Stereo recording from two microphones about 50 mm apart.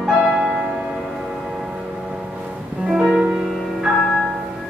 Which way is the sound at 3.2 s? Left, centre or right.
Centre.